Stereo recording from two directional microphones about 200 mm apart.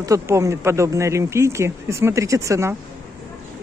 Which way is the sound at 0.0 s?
15° right (ahead or behind).